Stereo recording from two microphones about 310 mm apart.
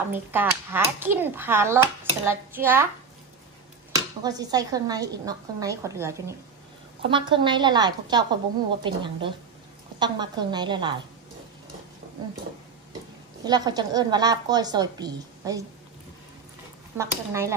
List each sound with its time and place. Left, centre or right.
0.1 s a child's voice: centre
4.2 s a child's voice: centre
13.4 s a child's voice: centre
16.9 s a child's voice: centre